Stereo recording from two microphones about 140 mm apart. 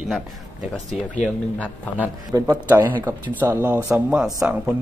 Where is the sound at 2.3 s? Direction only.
20° right (ahead or behind).